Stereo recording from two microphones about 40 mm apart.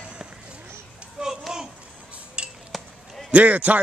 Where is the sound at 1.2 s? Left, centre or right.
Centre.